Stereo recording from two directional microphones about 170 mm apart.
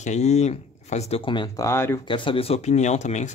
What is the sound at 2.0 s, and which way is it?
Speech, 30° left (ahead or behind).